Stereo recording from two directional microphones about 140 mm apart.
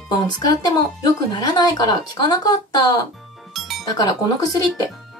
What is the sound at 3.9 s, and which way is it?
Speech, 25° left (ahead or behind).